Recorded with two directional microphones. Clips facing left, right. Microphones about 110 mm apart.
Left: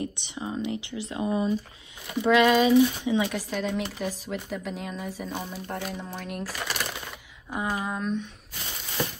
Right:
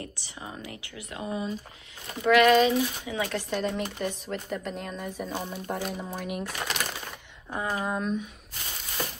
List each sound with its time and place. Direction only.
0.0 s speech: 20° left (ahead or behind)
3.3 s speech: centre (ahead or behind)